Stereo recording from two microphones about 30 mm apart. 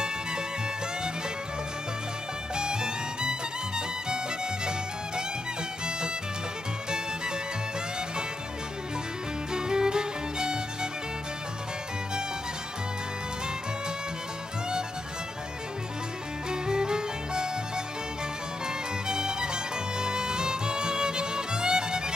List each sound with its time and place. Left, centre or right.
2.5 s music: right
5.9 s music: right
9.5 s music: right
16.4 s music: right
19.0 s music: right